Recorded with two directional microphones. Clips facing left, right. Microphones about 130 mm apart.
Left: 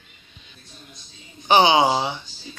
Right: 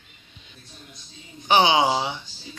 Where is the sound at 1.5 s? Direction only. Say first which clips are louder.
Left 2 dB; 5° right (ahead or behind).